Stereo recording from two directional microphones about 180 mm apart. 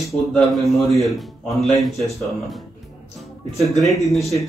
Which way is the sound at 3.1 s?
Centre (ahead or behind).